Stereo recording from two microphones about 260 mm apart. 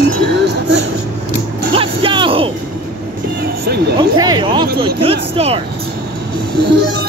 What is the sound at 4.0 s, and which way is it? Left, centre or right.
Speech, centre.